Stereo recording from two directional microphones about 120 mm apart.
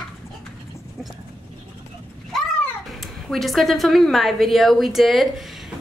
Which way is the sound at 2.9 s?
Centre (ahead or behind).